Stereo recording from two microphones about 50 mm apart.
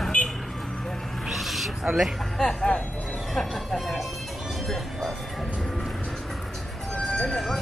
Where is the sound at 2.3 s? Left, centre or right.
Centre.